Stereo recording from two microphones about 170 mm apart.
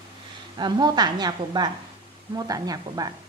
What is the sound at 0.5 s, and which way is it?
A woman's voice, 25° right (ahead or behind).